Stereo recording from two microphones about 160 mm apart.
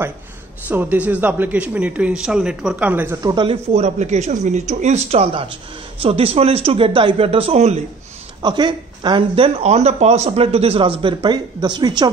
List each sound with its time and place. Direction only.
0.7 s speech: 10° right (ahead or behind)
3.2 s speech: 25° right (ahead or behind)
3.7 s speech: 45° right (ahead or behind)
8.4 s speech: 30° right (ahead or behind)